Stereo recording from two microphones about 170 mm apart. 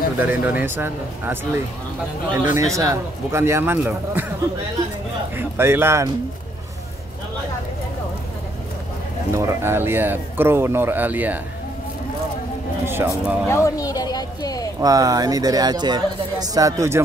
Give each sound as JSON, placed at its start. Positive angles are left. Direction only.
{"t": 0.3, "sound": "speech", "side_deg": -10}
{"t": 5.3, "sound": "speech", "side_deg": -15}
{"t": 9.3, "sound": "speech", "side_deg": -15}
{"t": 12.8, "sound": "speech", "side_deg": -15}
{"t": 13.5, "sound": "a sound", "side_deg": 20}
{"t": 14.8, "sound": "speech", "side_deg": -20}